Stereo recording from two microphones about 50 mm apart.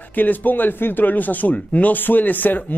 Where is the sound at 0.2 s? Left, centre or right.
Left.